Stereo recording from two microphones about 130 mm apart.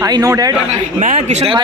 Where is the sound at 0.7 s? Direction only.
55° right (ahead or behind).